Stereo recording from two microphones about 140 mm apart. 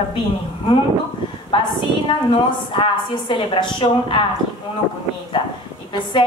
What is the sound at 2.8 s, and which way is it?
A woman's voice, 35° left (ahead or behind).